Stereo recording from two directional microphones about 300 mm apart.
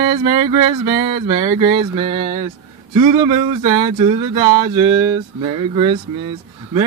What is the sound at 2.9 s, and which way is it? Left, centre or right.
Speech, centre.